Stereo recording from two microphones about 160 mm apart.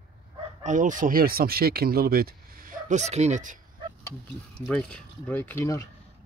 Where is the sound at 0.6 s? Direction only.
50° right (ahead or behind).